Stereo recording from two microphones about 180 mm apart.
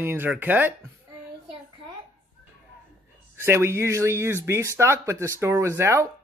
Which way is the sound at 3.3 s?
15° right (ahead or behind).